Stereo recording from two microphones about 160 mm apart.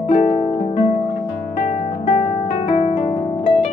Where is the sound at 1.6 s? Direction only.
50° left (ahead or behind).